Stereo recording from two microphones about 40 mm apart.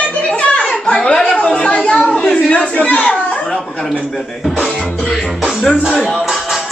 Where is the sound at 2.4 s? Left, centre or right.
Left.